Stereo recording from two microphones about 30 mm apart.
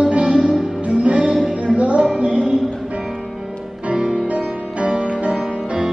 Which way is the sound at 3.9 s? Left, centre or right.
Right.